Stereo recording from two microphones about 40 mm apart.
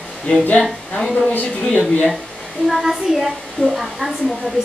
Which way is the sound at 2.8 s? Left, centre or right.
Centre.